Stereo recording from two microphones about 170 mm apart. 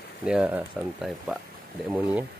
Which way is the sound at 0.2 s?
5° right (ahead or behind).